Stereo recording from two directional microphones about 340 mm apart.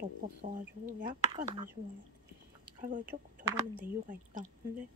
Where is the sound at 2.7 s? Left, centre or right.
Right.